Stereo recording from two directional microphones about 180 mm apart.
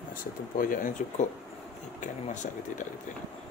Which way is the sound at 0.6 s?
50° left (ahead or behind).